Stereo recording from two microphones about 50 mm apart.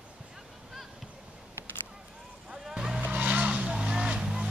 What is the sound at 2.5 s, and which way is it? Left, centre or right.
Vehicle, centre.